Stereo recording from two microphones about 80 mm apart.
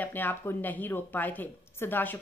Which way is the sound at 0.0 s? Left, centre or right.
Left.